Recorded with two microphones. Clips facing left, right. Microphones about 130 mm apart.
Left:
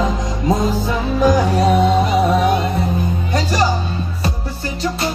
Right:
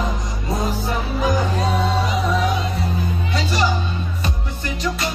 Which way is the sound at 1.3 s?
85° left.